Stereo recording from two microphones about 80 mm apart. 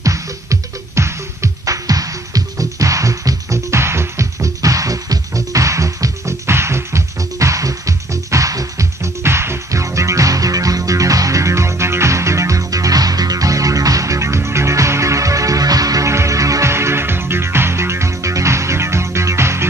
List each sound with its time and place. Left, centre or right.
0.0 s music: right